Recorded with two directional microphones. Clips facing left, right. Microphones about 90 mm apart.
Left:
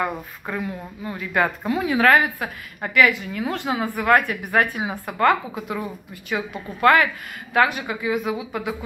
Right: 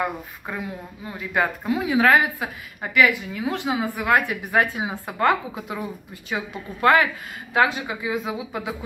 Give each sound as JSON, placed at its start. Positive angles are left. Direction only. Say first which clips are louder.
{"t": 0.0, "sound": "a woman's voice", "louder": "left 1 dB", "side_deg": -15}
{"t": 6.3, "sound": "a woman's voice", "louder": "left 2 dB", "side_deg": -20}